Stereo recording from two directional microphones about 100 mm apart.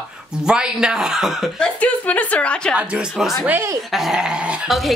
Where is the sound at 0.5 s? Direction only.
10° right (ahead or behind).